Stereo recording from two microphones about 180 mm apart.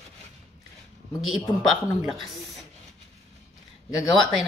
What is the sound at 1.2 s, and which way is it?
A woman's voice, centre (ahead or behind).